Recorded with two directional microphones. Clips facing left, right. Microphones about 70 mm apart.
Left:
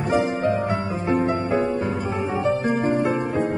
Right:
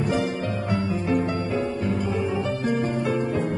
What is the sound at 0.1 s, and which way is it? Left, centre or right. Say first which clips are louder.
Music: left 5 dB; left.